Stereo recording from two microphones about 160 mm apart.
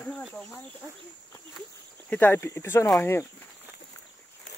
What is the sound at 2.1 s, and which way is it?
Speech, 15° left (ahead or behind).